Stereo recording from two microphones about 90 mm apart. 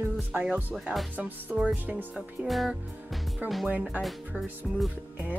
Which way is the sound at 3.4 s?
15° right (ahead or behind).